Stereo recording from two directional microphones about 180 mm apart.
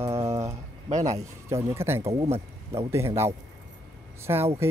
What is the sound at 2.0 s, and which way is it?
Speech, 35° right (ahead or behind).